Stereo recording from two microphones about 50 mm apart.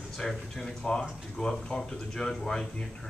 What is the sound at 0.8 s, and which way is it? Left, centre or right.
Speech, left.